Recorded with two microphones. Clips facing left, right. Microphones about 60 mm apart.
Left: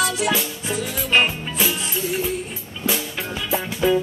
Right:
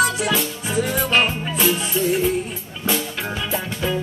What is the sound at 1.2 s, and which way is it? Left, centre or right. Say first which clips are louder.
Music: right 2 dB; centre.